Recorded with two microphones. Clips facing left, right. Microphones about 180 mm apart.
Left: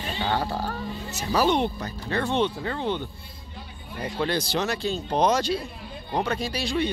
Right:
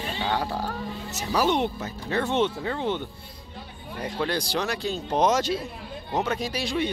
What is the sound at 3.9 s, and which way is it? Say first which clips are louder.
Speech: left 1 dB; 5° left (ahead or behind).